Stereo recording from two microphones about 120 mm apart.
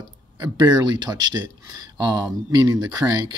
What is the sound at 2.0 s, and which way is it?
Speech, 35° right (ahead or behind).